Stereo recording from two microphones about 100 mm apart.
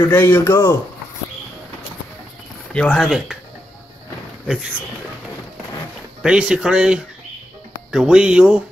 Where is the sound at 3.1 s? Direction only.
5° right (ahead or behind).